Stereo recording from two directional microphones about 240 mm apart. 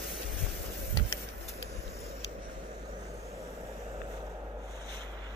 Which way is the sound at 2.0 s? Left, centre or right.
Centre.